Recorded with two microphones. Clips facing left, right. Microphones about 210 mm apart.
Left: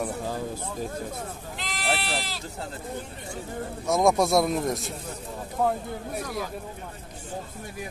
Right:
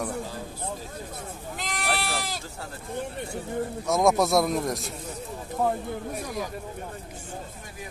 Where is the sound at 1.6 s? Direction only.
45° right (ahead or behind).